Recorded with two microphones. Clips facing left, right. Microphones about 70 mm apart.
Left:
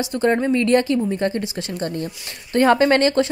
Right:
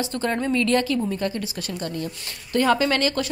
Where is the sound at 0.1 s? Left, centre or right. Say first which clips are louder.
Left 9 dB; left.